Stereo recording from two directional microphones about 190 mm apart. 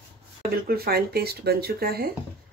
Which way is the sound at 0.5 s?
55° right (ahead or behind).